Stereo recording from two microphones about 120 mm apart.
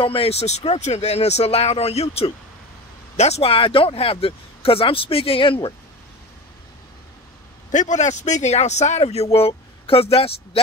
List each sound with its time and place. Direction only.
0.0 s speech: 50° left (ahead or behind)
7.7 s a man's voice: 85° left; by 10.6 s 55° left (ahead or behind)